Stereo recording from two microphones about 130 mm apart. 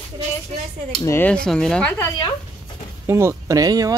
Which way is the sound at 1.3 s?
5° left (ahead or behind).